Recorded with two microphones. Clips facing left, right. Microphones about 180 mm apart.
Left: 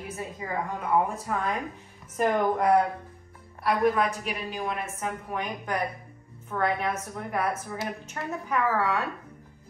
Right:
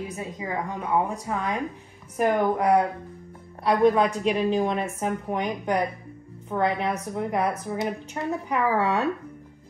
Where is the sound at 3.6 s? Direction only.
25° right (ahead or behind).